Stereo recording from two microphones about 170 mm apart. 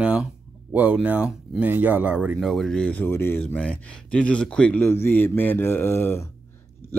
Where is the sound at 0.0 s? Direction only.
5° right (ahead or behind).